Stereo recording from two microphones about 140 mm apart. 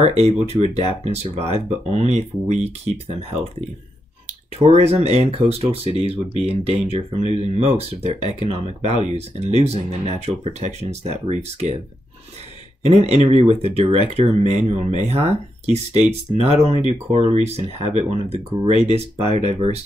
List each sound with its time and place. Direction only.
0.2 s speech: 50° right (ahead or behind)
4.6 s speech: 50° right (ahead or behind)
13.0 s speech: 50° right (ahead or behind)